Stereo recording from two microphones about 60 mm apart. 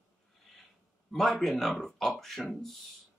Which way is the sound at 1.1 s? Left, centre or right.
Centre.